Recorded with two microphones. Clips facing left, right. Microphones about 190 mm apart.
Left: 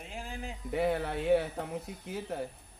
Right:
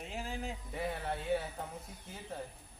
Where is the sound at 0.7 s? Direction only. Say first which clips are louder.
Left 10 dB; 75° left (ahead or behind).